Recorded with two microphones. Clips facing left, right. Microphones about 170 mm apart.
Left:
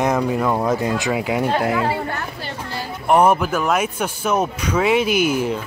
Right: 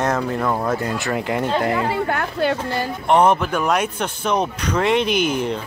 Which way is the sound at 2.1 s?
60° right (ahead or behind).